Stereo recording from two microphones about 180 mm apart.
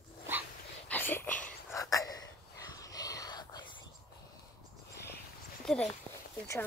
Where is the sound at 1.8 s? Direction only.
20° left (ahead or behind).